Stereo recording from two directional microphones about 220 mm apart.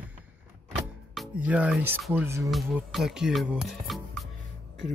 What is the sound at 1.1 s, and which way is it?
Speech, 5° right (ahead or behind).